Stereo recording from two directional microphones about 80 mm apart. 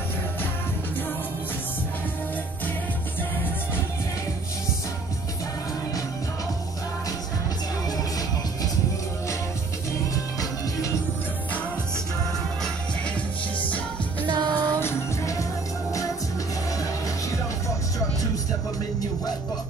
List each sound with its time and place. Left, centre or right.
10.1 s music: left
14.2 s music: right
14.8 s music: left
17.6 s music: left